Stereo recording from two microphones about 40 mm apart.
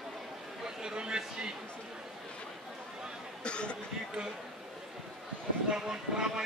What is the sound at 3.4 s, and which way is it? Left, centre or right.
Speech, left.